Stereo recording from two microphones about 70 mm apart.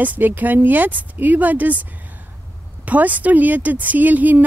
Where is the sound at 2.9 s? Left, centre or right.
Right.